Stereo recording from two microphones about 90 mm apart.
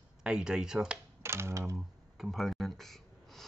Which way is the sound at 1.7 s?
Centre (ahead or behind).